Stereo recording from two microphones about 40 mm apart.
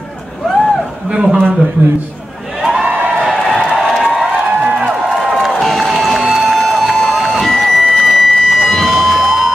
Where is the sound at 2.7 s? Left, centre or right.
Right.